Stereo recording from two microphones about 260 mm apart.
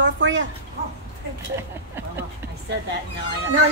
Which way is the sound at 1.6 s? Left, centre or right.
Centre.